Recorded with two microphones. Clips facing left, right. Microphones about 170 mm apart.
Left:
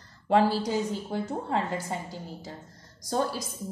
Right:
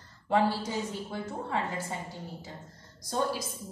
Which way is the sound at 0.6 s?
40° left (ahead or behind).